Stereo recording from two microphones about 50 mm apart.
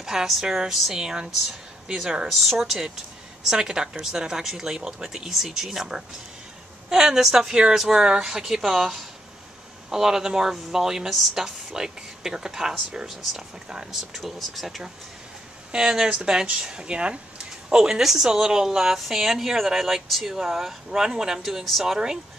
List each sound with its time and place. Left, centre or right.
0.0 s a woman's voice: centre
2.2 s a woman's voice: centre
14.2 s a woman's voice: centre
15.7 s a woman's voice: centre